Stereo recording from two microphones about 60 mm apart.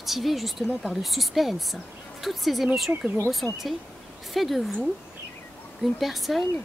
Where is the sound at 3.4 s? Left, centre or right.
Left.